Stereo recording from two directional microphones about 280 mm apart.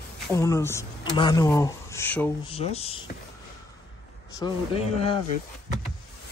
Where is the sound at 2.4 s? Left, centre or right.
Left.